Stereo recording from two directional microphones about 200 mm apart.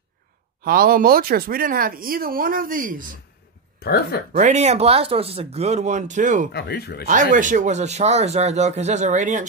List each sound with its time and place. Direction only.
0.7 s speech: 45° right (ahead or behind)
3.8 s speech: 50° left (ahead or behind)
4.3 s speech: 35° right (ahead or behind)
6.5 s speech: 55° left (ahead or behind)
7.1 s speech: 40° right (ahead or behind)